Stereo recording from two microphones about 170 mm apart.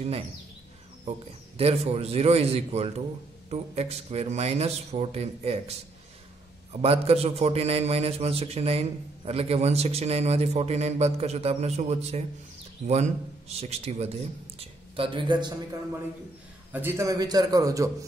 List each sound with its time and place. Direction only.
1.6 s a man's voice: 35° right (ahead or behind)
16.7 s a man's voice: 15° right (ahead or behind)